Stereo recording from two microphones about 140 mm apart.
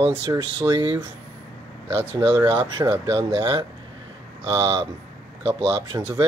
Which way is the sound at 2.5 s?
35° right (ahead or behind).